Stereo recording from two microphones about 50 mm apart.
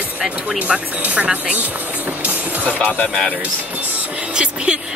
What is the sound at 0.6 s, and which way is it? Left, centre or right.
A woman's voice, right.